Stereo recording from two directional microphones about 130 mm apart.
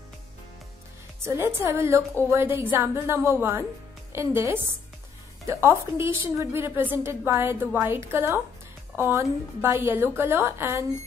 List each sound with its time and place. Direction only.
1.2 s a woman's voice: 20° right (ahead or behind)